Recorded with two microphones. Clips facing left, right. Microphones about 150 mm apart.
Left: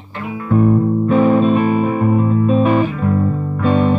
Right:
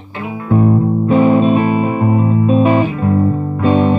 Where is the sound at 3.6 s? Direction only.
20° right (ahead or behind).